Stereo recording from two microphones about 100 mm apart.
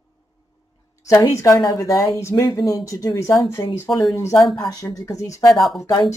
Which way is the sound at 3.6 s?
50° left (ahead or behind).